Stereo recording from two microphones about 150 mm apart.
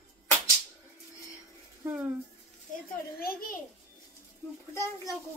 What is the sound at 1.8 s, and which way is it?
Speech, 15° right (ahead or behind).